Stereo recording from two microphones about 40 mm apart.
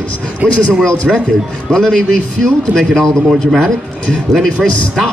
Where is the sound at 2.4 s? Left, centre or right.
Centre.